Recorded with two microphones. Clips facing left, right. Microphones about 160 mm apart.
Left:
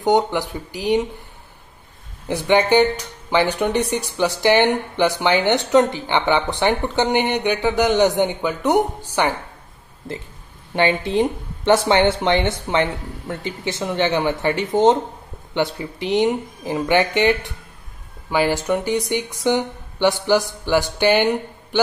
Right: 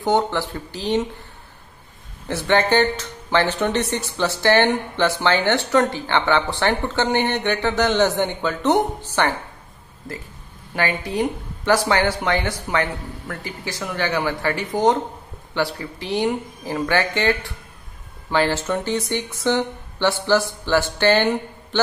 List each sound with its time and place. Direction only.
0.0 s speech: 15° left (ahead or behind)
2.2 s speech: 15° left (ahead or behind)
10.7 s speech: 25° left (ahead or behind)